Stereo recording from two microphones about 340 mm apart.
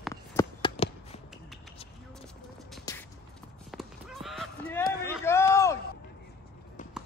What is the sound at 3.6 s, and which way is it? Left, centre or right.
Honk, centre.